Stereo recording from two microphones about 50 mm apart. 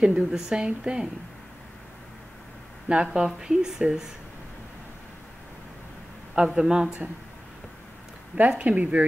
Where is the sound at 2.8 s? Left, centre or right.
Right.